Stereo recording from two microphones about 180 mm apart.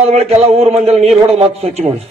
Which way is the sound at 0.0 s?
35° right (ahead or behind).